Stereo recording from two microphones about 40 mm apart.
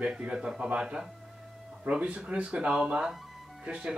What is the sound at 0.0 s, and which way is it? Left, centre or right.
Speech, centre.